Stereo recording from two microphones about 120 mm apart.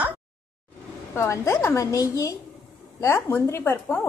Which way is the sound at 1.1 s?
25° left (ahead or behind).